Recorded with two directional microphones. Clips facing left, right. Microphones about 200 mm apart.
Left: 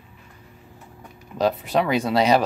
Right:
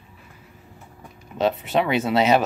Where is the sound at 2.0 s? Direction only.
25° right (ahead or behind).